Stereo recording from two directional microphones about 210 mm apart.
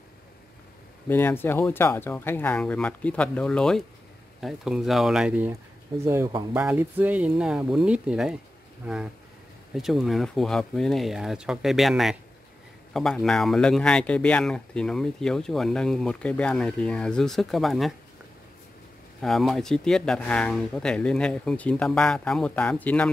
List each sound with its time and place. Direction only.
1.0 s speech: 10° left (ahead or behind)
19.2 s speech: centre (ahead or behind)